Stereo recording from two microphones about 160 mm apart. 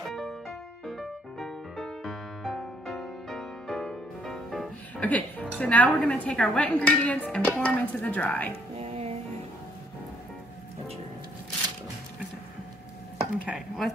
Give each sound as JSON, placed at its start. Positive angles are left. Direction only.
{"t": 0.0, "sound": "music", "side_deg": 0}
{"t": 5.6, "sound": "speech", "side_deg": 10}
{"t": 8.7, "sound": "music", "side_deg": -40}
{"t": 13.5, "sound": "speech", "side_deg": 0}